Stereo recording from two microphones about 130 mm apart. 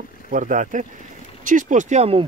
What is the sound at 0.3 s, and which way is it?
Speech, 85° right.